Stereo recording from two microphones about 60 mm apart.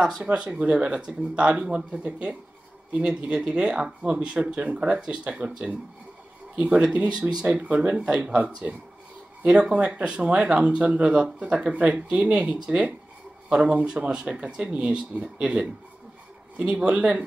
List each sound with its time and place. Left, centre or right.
0.2 s speech: centre
3.0 s speech: centre
6.5 s speech: right
8.2 s speech: right
16.8 s speech: right